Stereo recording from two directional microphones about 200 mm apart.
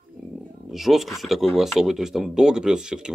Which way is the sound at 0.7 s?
Centre (ahead or behind).